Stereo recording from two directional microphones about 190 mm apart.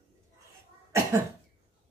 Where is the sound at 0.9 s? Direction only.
15° right (ahead or behind).